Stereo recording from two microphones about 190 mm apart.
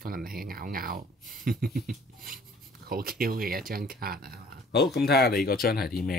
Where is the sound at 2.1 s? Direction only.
50° right (ahead or behind).